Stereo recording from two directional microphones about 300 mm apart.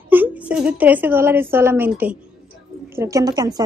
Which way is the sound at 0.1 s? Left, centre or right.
Centre.